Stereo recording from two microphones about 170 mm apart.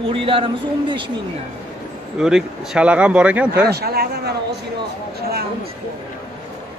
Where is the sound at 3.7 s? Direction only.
70° right (ahead or behind).